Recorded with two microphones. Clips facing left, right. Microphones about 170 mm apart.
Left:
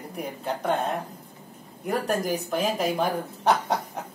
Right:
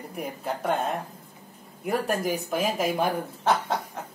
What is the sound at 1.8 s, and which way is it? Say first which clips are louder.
Speech: even; centre (ahead or behind).